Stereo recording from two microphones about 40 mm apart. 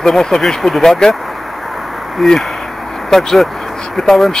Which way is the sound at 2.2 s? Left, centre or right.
Centre.